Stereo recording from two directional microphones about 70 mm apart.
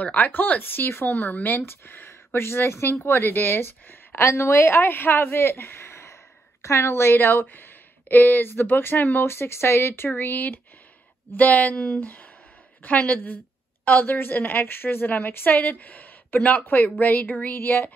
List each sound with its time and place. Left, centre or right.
0.0 s a woman's voice: left
11.7 s speech: centre
12.0 s a woman's voice: left